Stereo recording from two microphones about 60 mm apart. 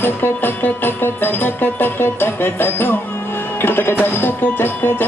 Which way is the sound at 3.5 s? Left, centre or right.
Left.